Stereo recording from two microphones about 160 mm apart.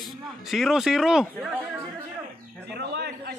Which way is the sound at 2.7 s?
90° right.